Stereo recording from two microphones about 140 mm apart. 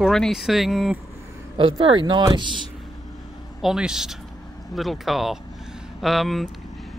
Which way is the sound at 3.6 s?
5° right (ahead or behind).